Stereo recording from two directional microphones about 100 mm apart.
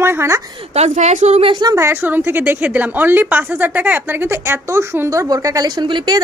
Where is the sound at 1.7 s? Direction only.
20° right (ahead or behind).